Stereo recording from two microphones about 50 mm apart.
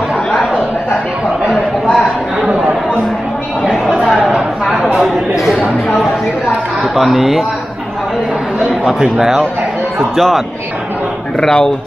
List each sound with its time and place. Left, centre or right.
2.0 s a sound: centre
3.9 s chatter: centre
4.2 s chatter: centre
5.4 s a sound: centre
7.0 s a man's voice: centre
8.8 s a man's voice: centre
10.1 s a man's voice: centre